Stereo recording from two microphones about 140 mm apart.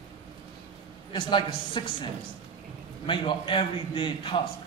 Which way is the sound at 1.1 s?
35° left (ahead or behind).